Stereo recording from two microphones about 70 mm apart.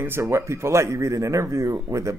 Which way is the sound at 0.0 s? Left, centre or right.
Right.